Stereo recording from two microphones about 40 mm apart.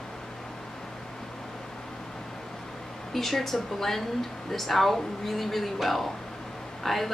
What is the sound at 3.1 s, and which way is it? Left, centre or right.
A woman's voice, centre.